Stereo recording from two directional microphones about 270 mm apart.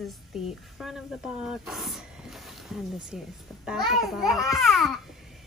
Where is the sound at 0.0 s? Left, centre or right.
Centre.